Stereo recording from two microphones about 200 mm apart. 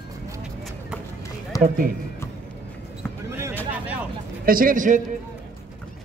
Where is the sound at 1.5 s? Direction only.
15° left (ahead or behind).